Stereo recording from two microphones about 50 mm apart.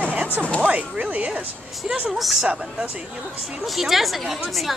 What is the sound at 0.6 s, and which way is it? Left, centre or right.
Speech, right.